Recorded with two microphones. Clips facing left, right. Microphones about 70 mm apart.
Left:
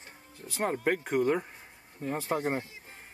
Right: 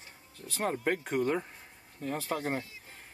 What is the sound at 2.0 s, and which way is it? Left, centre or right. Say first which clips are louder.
Speech: left 3 dB; left.